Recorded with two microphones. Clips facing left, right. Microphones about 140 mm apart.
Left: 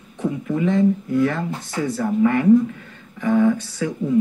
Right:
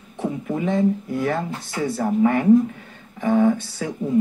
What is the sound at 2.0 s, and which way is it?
Speech, 35° right (ahead or behind).